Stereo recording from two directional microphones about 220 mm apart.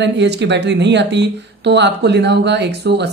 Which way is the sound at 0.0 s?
50° right (ahead or behind).